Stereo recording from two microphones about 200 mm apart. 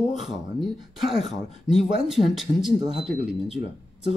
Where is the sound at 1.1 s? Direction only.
Centre (ahead or behind).